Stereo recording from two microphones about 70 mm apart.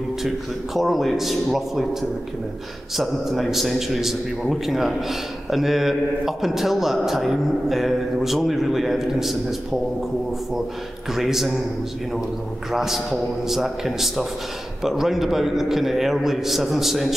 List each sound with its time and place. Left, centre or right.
0.7 s a man's voice: centre
3.0 s a man's voice: centre
11.1 s a man's voice: centre
12.7 s a man's voice: centre